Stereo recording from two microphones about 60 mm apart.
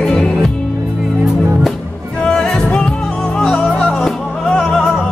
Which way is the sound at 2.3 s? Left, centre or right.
Centre.